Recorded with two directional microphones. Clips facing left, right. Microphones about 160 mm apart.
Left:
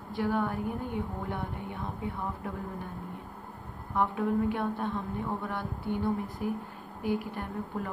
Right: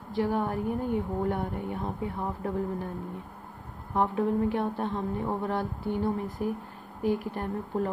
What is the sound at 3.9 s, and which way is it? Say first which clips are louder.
A woman's voice: right 2 dB; 35° right (ahead or behind).